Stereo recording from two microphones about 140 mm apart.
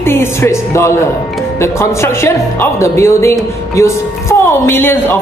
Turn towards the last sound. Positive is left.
turn(degrees=15)  # may be behind; listen again after turning